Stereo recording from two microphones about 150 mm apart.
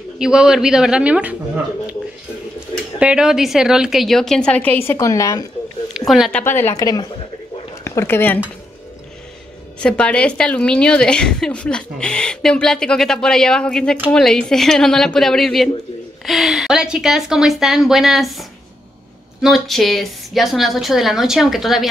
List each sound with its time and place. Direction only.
0.2 s a woman's voice: 5° right (ahead or behind)
2.7 s a woman's voice: 5° right (ahead or behind); by 5.4 s 20° left (ahead or behind)
5.9 s speech: centre (ahead or behind)
6.4 s speech: 15° left (ahead or behind)
9.8 s a woman's voice: 5° left (ahead or behind)